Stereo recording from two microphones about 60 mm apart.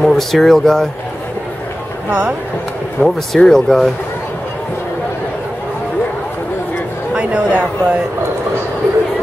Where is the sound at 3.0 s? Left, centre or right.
Right.